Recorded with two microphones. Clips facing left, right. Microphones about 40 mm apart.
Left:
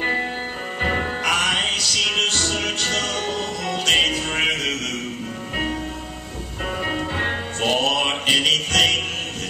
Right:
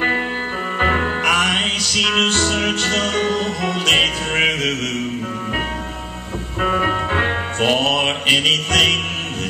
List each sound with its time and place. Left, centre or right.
0.7 s music: right
6.6 s music: right
7.7 s music: centre